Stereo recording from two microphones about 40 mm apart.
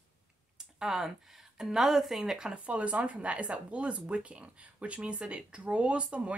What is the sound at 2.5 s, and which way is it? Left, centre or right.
Speech, right.